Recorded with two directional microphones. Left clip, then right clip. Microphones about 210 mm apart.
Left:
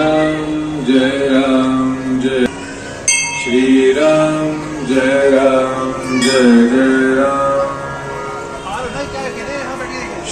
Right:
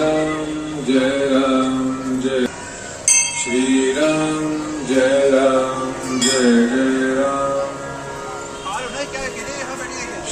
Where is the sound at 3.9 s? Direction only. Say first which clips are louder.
Left 7 dB; 50° right (ahead or behind).